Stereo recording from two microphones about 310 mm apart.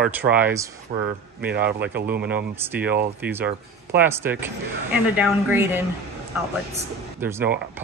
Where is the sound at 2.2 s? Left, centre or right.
Centre.